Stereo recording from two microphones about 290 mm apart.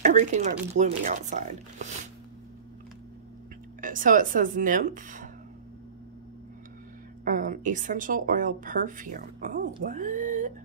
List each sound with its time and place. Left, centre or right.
0.0 s a woman's voice: right
3.8 s a woman's voice: right
7.2 s a woman's voice: right